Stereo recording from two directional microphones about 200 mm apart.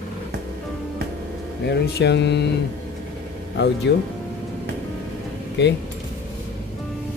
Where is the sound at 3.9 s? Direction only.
60° left (ahead or behind).